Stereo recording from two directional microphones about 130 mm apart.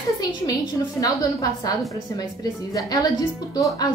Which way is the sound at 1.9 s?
25° left (ahead or behind).